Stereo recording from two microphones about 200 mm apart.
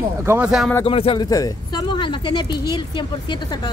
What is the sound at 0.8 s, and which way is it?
Speech, 25° left (ahead or behind).